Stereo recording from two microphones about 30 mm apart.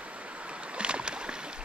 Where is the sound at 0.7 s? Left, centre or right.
Right.